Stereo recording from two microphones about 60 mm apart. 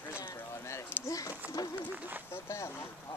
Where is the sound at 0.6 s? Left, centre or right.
Left.